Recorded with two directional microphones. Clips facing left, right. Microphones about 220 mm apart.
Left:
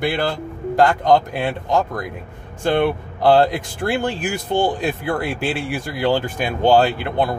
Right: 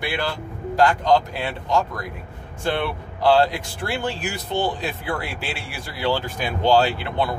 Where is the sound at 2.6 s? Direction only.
50° left (ahead or behind).